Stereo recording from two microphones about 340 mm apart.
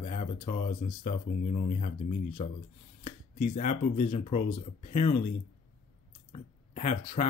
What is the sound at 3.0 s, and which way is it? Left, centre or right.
Speech, left.